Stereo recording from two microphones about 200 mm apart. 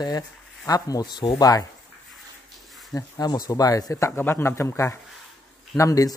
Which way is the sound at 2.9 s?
20° left (ahead or behind).